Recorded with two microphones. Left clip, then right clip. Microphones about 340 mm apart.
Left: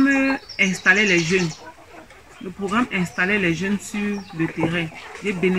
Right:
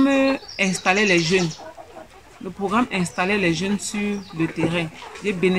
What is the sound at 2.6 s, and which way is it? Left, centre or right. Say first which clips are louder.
Speech: right 1 dB; centre.